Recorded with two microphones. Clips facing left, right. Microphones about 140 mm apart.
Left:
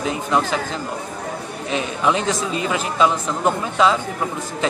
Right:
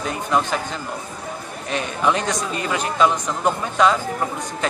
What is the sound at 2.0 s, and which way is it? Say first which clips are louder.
Speech: even; 5° left (ahead or behind).